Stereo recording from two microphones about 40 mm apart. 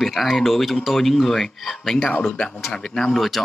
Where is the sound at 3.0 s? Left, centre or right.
Centre.